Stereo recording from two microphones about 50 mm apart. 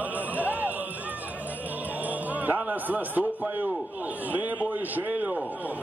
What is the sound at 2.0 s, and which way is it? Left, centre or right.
A man's voice, right.